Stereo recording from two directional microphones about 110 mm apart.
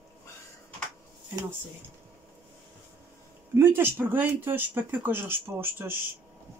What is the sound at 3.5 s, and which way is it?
Speech, 20° right (ahead or behind).